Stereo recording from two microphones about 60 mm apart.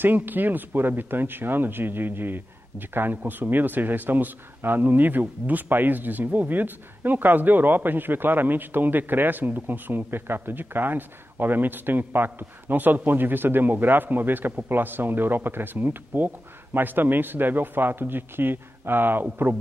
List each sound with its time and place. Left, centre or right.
0.0 s speech: right